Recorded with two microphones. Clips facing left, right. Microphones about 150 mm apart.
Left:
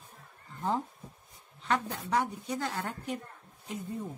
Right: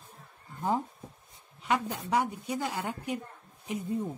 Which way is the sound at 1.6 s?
10° right (ahead or behind).